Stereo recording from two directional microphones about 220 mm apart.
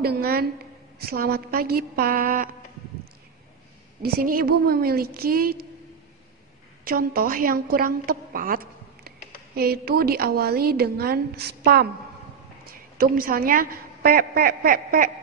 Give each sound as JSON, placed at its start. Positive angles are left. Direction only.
{"t": 0.0, "sound": "a woman's voice", "side_deg": -45}
{"t": 4.0, "sound": "a woman's voice", "side_deg": -40}
{"t": 6.8, "sound": "a woman's voice", "side_deg": -40}
{"t": 9.6, "sound": "a woman's voice", "side_deg": -45}